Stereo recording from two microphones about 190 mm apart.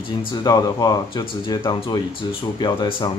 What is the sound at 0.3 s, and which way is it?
Speech, 20° left (ahead or behind).